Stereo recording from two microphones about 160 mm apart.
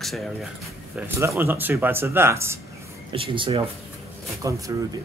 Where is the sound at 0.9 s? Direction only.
15° right (ahead or behind).